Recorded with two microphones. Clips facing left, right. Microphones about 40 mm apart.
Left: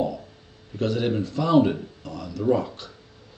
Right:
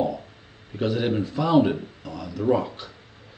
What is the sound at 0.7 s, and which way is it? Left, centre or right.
Speech, centre.